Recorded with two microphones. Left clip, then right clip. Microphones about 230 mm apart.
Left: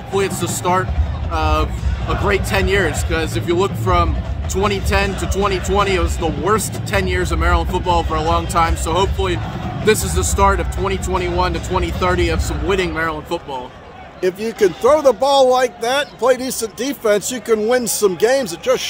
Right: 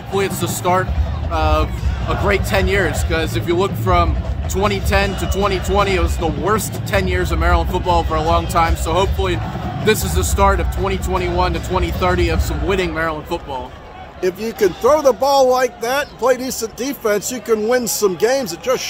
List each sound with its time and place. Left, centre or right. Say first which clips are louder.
0.1 s speech: even; centre
14.2 s speech: left 1 dB; centre